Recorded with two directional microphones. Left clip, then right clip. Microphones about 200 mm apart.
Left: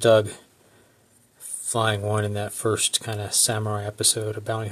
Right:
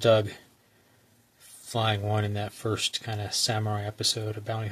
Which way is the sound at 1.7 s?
20° left (ahead or behind).